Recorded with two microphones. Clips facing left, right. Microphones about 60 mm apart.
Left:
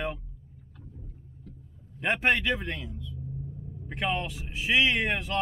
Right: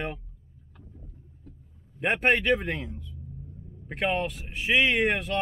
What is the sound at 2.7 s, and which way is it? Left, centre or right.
Speech, right.